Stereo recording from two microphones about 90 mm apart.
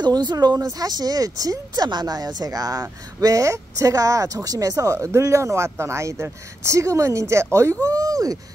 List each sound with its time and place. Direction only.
0.0 s speech: 50° right (ahead or behind)